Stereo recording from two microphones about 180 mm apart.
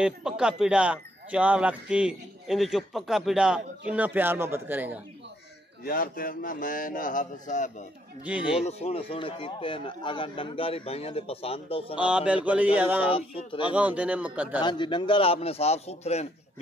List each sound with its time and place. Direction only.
0.0 s a man's voice: 5° right (ahead or behind)
5.9 s a man's voice: 50° left (ahead or behind)
8.3 s speech: 5° right (ahead or behind)
8.6 s speech: 35° left (ahead or behind)
12.0 s a man's voice: 5° right (ahead or behind)
13.1 s speech: 30° left (ahead or behind)
13.7 s a man's voice: 10° right (ahead or behind)
14.6 s speech: 25° left (ahead or behind)